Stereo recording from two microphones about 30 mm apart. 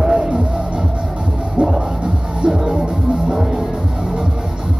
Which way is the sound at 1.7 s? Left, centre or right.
Right.